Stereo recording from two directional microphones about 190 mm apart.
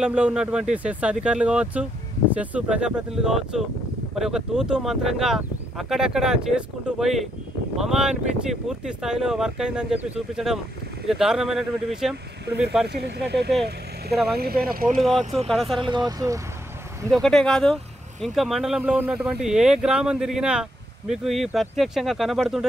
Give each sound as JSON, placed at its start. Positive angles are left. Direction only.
{"t": 0.0, "sound": "speech", "side_deg": -5}
{"t": 12.8, "sound": "speech", "side_deg": -60}
{"t": 14.1, "sound": "speech", "side_deg": 0}
{"t": 14.4, "sound": "speech", "side_deg": -50}
{"t": 15.0, "sound": "speech", "side_deg": 0}
{"t": 15.8, "sound": "speech", "side_deg": -20}
{"t": 17.1, "sound": "speech", "side_deg": 0}